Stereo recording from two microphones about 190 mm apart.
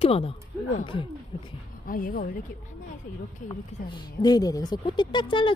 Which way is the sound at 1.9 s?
50° left (ahead or behind).